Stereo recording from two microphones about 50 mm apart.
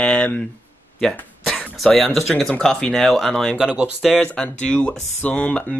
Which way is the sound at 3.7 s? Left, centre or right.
Right.